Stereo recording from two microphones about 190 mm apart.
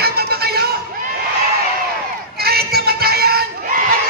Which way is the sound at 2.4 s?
55° right (ahead or behind).